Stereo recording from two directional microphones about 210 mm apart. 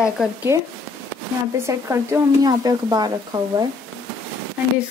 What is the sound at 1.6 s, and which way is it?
Speech, 15° right (ahead or behind).